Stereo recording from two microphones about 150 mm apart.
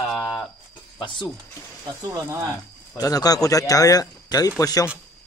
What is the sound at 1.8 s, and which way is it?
Speech, 20° right (ahead or behind).